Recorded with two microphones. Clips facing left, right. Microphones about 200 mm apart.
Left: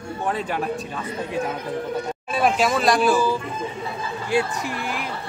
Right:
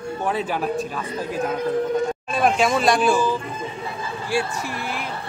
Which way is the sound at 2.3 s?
5° left (ahead or behind).